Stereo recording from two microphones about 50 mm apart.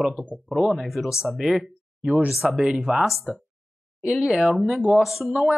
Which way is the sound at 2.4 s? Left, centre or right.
Centre.